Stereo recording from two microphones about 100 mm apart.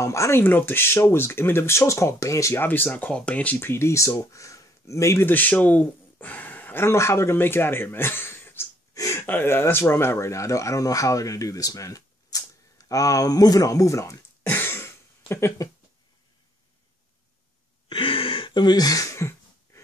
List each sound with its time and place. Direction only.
0.0 s speech: 30° left (ahead or behind)
9.2 s speech: 20° left (ahead or behind)
17.8 s throat clearing: 60° left (ahead or behind); by 19.8 s 30° left (ahead or behind)